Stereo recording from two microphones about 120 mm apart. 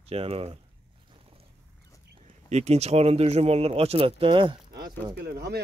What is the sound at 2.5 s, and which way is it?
Speech, 65° right (ahead or behind).